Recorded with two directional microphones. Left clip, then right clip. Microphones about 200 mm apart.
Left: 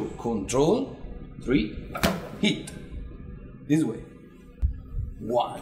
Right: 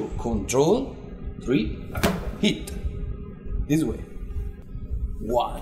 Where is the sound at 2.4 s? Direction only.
20° right (ahead or behind).